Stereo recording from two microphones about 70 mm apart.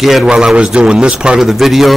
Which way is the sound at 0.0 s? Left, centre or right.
Centre.